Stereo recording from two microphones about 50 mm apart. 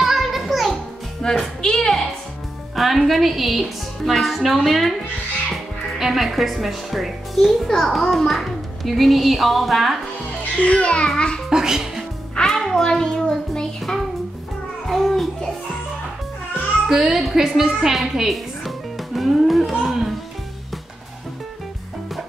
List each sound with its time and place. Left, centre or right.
0.0 s music: centre
1.6 s a sound: centre
2.7 s a child's voice: centre
5.9 s a child's voice: centre
10.6 s a child's voice: left
11.4 s a child's voice: centre
12.4 s a child's voice: centre
14.9 s music: centre
16.9 s a woman's voice: centre